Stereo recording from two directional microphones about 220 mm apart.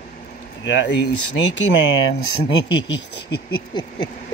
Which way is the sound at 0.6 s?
55° left (ahead or behind).